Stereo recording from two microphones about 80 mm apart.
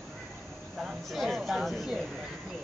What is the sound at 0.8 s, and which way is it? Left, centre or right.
Speech, centre.